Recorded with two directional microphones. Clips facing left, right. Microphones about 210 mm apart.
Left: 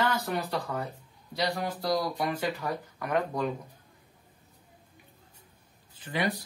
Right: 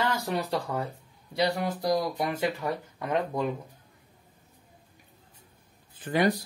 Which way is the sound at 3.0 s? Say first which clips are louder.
Even; 25° right (ahead or behind).